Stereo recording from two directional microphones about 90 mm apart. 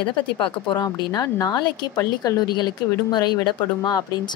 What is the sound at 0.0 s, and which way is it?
Speech, 65° left (ahead or behind).